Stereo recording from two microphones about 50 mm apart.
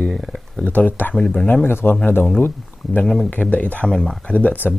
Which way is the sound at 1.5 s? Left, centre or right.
Left.